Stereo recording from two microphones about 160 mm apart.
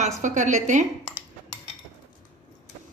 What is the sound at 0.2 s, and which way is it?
Speech, 50° right (ahead or behind).